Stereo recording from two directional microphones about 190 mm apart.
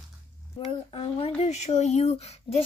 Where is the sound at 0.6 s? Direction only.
30° left (ahead or behind).